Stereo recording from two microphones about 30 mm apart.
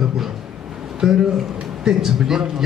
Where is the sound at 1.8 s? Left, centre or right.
Centre.